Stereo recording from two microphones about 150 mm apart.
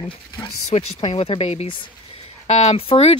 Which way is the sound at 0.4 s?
35° left (ahead or behind).